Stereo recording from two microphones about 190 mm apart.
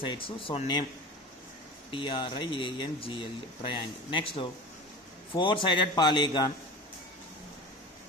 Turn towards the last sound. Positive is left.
turn(degrees=25)  # may be behind; listen again after turning